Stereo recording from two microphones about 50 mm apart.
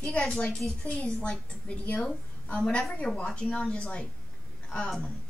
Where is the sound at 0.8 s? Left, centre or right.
Left.